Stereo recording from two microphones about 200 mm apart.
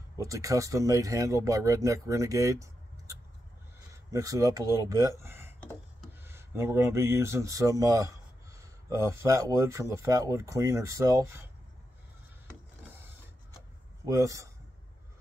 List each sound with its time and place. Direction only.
0.2 s speech: 15° right (ahead or behind)
14.0 s speech: 15° right (ahead or behind)